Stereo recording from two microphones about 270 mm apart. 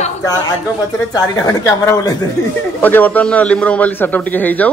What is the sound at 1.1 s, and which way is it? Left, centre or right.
A man's voice, centre.